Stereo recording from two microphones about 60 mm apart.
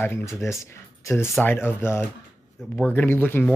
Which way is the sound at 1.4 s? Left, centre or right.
Left.